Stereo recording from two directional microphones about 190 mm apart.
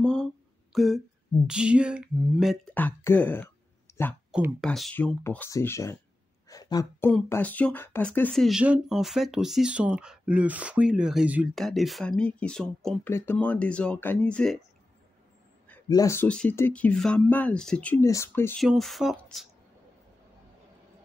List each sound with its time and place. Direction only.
0.0 s a sound: 5° left (ahead or behind)
0.7 s speech: centre (ahead or behind)
2.7 s speech: 10° left (ahead or behind)
4.3 s speech: centre (ahead or behind); by 5.9 s 15° left (ahead or behind)
6.5 s a sound: 20° left (ahead or behind)
7.1 s speech: 10° left (ahead or behind)
15.9 s speech: 15° left (ahead or behind)
18.6 s speech: centre (ahead or behind)